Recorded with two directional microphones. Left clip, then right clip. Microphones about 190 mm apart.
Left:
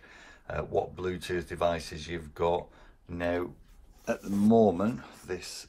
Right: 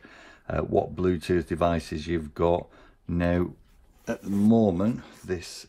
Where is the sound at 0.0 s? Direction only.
50° right (ahead or behind).